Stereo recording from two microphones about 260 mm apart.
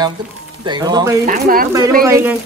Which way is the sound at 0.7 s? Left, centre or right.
Centre.